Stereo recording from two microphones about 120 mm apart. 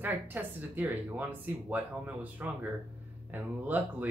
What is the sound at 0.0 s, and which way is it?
Speech, 15° right (ahead or behind).